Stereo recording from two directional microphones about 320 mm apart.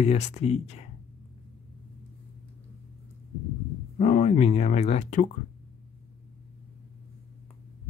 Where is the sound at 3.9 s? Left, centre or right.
Left.